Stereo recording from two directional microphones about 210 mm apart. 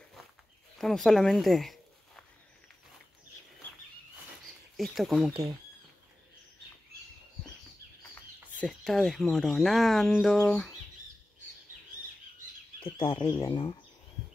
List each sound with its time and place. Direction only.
0.7 s speech: centre (ahead or behind)
4.7 s speech: centre (ahead or behind)
5.3 s speech: 20° right (ahead or behind)
8.5 s speech: 5° left (ahead or behind)
12.8 s speech: 25° left (ahead or behind)
13.2 s speech: 15° left (ahead or behind)